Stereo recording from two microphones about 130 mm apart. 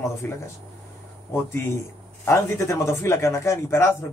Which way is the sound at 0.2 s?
15° left (ahead or behind).